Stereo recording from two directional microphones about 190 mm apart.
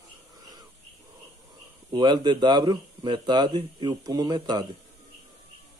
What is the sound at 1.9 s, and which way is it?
Speech, 25° right (ahead or behind).